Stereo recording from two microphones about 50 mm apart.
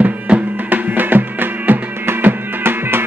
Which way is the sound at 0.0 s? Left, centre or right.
Right.